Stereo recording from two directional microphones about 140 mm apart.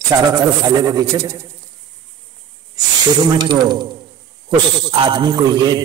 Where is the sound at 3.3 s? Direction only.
30° right (ahead or behind).